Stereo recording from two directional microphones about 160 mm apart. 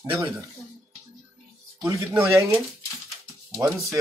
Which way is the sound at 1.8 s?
20° right (ahead or behind).